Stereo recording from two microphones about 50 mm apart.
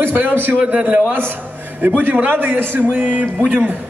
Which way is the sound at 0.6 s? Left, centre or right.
Right.